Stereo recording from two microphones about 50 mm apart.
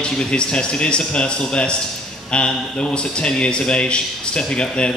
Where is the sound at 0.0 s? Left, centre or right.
Centre.